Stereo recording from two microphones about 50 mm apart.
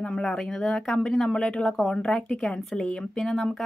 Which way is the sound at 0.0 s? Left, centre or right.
Centre.